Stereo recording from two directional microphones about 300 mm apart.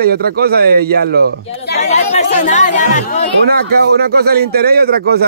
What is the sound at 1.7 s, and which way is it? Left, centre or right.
Speech, left.